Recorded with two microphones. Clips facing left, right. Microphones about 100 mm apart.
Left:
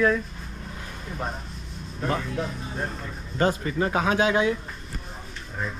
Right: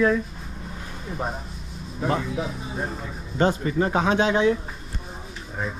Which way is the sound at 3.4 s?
30° right (ahead or behind).